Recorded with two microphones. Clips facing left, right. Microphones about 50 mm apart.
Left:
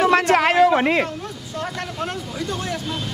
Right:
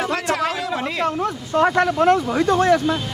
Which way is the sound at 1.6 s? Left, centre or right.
Right.